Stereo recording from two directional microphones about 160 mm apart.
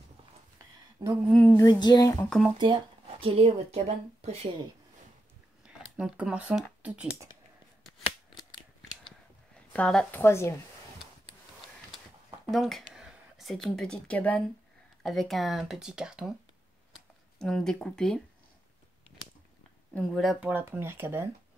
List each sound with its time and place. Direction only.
1.0 s a sound: 20° right (ahead or behind)
1.6 s speech: 25° left (ahead or behind)
2.2 s speech: centre (ahead or behind)
3.1 s speech: 35° right (ahead or behind)
5.7 s speech: 5° right (ahead or behind)
9.7 s a woman's voice: 5° left (ahead or behind)
12.4 s speech: centre (ahead or behind)
17.4 s speech: 5° left (ahead or behind)
19.9 s speech: 5° left (ahead or behind); by 21.3 s 15° right (ahead or behind)